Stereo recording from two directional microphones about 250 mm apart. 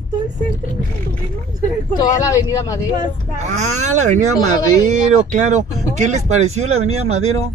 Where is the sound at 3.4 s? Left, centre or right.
Right.